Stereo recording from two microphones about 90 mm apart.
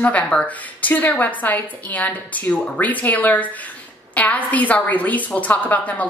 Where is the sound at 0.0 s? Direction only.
15° left (ahead or behind).